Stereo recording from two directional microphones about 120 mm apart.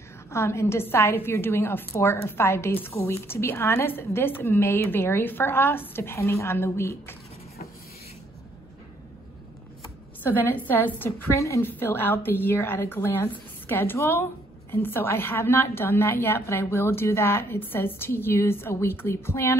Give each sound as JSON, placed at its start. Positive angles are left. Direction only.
{"t": 0.3, "sound": "a woman's voice", "side_deg": 20}
{"t": 10.2, "sound": "a woman's voice", "side_deg": 15}